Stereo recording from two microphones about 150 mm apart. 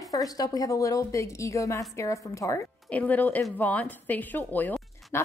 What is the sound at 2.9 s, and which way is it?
A woman's voice, 10° left (ahead or behind).